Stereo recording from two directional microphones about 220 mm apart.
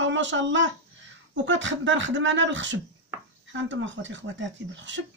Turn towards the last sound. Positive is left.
turn(degrees=-55)  # may be behind; listen again after turning